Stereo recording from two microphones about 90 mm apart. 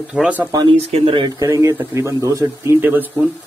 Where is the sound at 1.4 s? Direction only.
35° right (ahead or behind).